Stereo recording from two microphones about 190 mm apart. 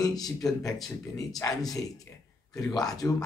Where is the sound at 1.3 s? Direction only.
20° left (ahead or behind).